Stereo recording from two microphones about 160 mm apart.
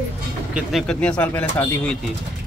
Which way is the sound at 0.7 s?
Centre (ahead or behind).